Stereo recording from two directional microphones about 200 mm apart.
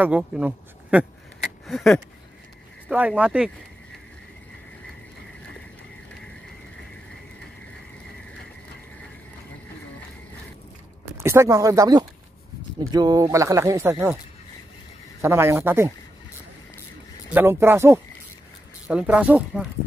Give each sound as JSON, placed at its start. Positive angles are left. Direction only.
{"t": 0.0, "sound": "speech", "side_deg": -5}
{"t": 11.1, "sound": "speech", "side_deg": -15}
{"t": 15.2, "sound": "speech", "side_deg": -10}
{"t": 17.3, "sound": "speech", "side_deg": -10}